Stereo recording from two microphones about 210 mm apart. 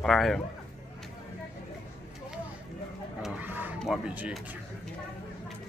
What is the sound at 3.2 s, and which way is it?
Vehicle, 10° right (ahead or behind).